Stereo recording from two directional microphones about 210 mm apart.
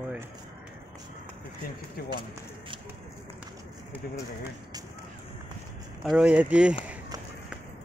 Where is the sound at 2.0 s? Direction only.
45° left (ahead or behind).